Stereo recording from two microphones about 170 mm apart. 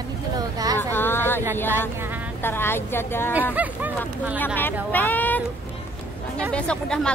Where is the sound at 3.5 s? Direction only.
10° right (ahead or behind).